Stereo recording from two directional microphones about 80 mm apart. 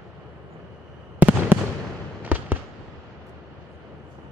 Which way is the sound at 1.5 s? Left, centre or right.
Right.